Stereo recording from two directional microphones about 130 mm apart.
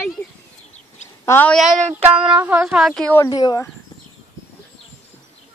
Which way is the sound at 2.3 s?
10° right (ahead or behind).